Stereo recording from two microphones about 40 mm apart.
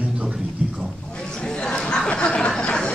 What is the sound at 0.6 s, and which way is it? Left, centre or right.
Speech, right.